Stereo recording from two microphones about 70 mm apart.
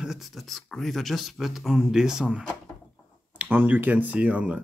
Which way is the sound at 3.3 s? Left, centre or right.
Right.